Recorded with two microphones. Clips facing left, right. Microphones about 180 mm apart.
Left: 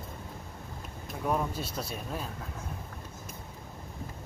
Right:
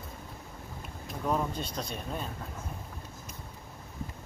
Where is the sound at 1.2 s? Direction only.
5° left (ahead or behind).